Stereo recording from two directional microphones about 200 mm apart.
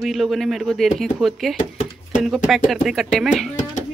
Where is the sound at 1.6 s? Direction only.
40° left (ahead or behind).